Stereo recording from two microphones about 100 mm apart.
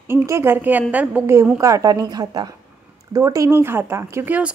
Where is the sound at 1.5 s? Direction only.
35° right (ahead or behind); by 4.5 s 20° right (ahead or behind).